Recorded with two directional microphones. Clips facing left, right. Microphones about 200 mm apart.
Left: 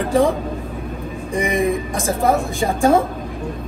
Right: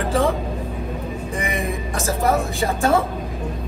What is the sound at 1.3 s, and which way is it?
Speech, 15° left (ahead or behind).